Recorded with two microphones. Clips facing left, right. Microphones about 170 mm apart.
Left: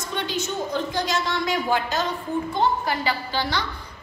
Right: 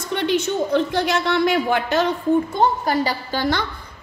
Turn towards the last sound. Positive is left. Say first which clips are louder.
# right 4 dB
turn(degrees=-50)  # may be behind; listen again after turning